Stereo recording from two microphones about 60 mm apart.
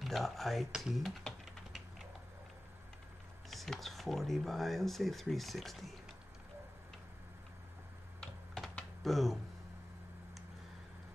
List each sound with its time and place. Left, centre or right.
0.0 s speech: centre
0.7 s speech: centre
0.9 s typing: centre
3.4 s speech: centre
9.0 s speech: centre